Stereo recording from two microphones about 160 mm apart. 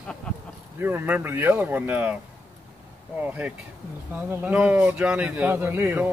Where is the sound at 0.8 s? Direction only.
10° right (ahead or behind).